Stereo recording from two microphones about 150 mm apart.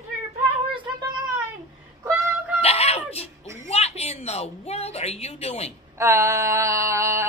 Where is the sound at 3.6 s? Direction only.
45° left (ahead or behind).